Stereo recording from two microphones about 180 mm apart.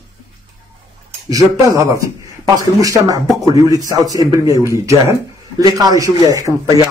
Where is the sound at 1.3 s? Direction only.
20° right (ahead or behind).